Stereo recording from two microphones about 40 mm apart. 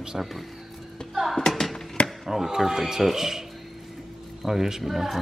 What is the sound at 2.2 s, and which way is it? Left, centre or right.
Speech, centre.